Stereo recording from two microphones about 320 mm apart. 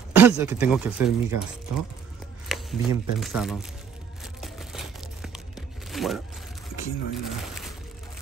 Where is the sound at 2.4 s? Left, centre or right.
Centre.